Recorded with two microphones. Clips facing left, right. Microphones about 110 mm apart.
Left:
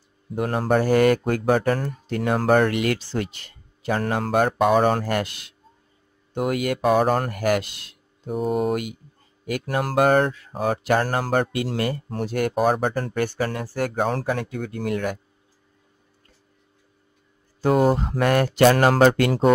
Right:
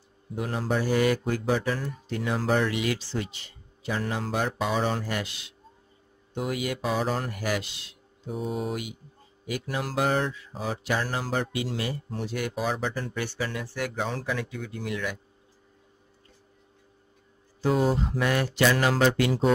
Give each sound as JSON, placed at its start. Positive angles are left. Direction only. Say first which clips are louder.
{"t": 0.4, "sound": "speech", "louder": "left 7 dB", "side_deg": 55}
{"t": 17.6, "sound": "speech", "louder": "left 5 dB", "side_deg": 55}